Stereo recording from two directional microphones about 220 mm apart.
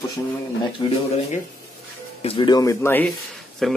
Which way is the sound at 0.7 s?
25° left (ahead or behind).